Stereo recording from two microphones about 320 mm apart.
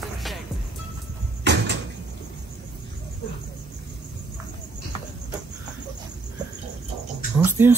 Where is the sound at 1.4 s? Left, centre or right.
Right.